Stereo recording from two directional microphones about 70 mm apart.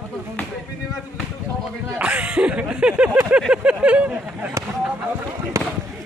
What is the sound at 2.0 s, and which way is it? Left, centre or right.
Speech, centre.